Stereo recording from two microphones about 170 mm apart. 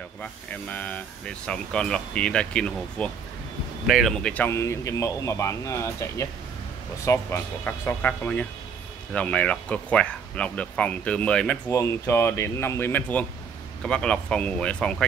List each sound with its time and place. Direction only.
0.2 s speech: 10° left (ahead or behind)